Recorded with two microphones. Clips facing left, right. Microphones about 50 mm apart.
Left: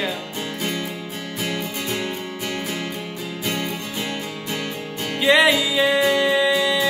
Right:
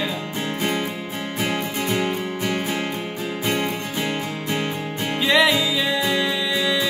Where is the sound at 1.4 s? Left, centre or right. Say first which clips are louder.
Right 2 dB; right.